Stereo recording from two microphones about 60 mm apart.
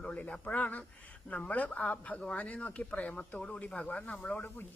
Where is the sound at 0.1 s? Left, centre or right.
Left.